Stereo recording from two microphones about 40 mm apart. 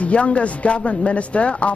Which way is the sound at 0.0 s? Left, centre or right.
Left.